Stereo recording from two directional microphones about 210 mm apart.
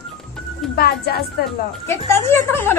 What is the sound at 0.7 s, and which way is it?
Speech, 45° left (ahead or behind).